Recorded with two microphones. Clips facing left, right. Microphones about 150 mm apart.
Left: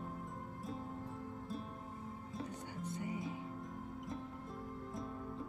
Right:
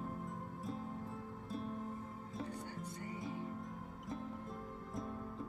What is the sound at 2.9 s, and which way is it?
Music, 15° left (ahead or behind).